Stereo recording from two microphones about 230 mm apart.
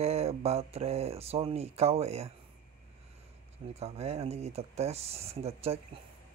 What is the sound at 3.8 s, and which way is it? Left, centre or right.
Speech, right.